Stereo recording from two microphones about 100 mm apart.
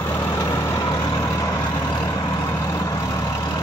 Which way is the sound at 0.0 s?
30° left (ahead or behind).